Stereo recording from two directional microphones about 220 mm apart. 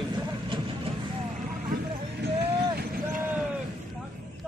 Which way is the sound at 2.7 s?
40° right (ahead or behind).